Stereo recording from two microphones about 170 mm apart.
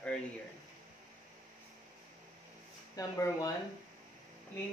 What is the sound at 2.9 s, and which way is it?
Speech, 20° left (ahead or behind).